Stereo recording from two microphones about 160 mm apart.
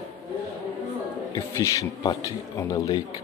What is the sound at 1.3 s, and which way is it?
A man's voice, 20° left (ahead or behind).